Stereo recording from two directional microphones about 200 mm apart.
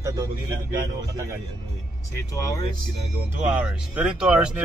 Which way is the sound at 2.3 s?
20° left (ahead or behind).